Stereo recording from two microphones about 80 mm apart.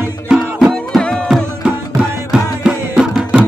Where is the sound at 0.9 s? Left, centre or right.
Centre.